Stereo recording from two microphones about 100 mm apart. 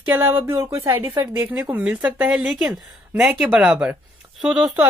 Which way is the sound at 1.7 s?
15° right (ahead or behind).